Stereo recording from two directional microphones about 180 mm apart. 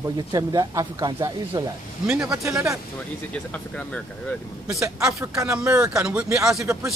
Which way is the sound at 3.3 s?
5° left (ahead or behind).